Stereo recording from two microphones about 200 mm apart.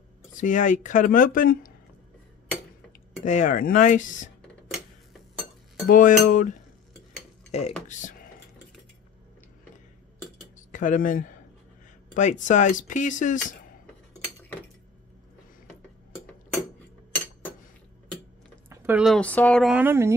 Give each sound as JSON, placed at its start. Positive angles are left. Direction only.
{"t": 0.3, "sound": "speech", "side_deg": 40}
{"t": 3.2, "sound": "speech", "side_deg": 35}
{"t": 5.9, "sound": "speech", "side_deg": 40}
{"t": 7.5, "sound": "speech", "side_deg": 35}
{"t": 10.7, "sound": "speech", "side_deg": 40}
{"t": 18.7, "sound": "speech", "side_deg": -10}